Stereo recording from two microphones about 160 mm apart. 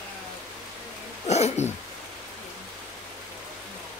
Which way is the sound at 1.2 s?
45° left (ahead or behind).